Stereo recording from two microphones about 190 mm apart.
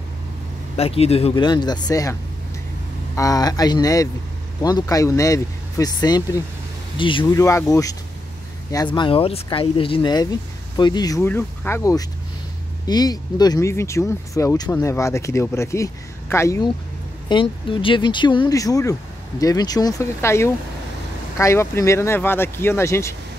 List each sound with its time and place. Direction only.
0.7 s speech: 30° left (ahead or behind)
3.2 s speech: 20° left (ahead or behind)